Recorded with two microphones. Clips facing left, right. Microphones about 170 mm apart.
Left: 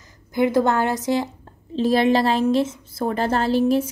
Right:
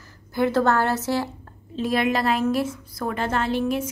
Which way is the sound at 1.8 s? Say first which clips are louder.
Left 5 dB; 30° left (ahead or behind).